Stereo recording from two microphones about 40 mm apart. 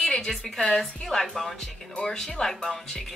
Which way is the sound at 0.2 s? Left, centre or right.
Centre.